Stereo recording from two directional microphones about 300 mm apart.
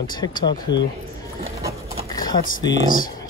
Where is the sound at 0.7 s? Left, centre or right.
Left.